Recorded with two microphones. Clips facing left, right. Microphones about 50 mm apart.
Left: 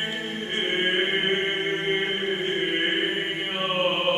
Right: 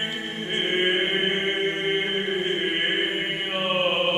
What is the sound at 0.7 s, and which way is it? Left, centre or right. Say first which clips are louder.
Music: right 1 dB; centre.